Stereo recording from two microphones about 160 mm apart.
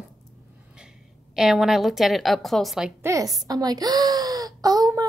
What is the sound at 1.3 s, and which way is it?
A woman's voice, centre (ahead or behind).